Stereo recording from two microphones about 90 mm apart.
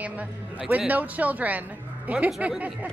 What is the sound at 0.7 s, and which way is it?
Speech, 15° right (ahead or behind).